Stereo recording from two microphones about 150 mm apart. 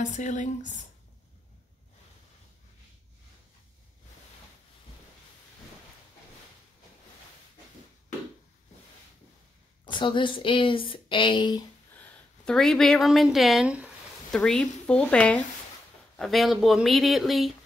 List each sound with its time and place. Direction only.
0.0 s speech: 55° left (ahead or behind)
9.8 s speech: 35° left (ahead or behind)
12.0 s speech: 5° left (ahead or behind)